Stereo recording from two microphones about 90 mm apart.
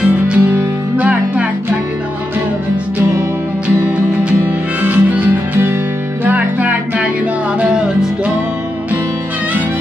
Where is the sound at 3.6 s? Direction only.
10° right (ahead or behind).